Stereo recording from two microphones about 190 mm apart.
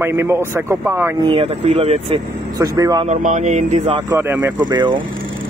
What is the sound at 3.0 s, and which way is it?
Speech, 40° right (ahead or behind).